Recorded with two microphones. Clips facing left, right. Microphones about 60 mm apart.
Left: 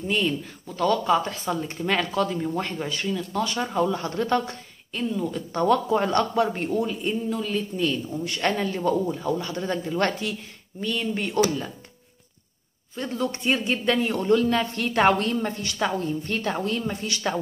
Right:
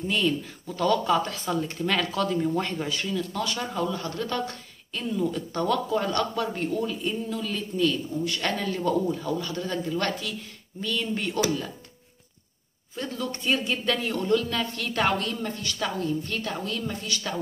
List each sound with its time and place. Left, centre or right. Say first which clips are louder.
0.1 s speech: left 1 dB; centre
3.7 s speech: left 5 dB; left
4.5 s speech: left 2 dB; centre; by 10.3 s left
10.8 s speech: left 2 dB; centre
13.0 s speech: left 2 dB; centre
13.3 s speech: right 1 dB; centre